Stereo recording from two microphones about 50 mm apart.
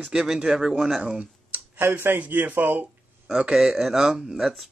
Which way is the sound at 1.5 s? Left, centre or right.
Right.